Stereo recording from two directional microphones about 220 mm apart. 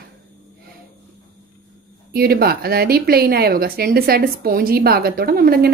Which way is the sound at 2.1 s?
45° right (ahead or behind).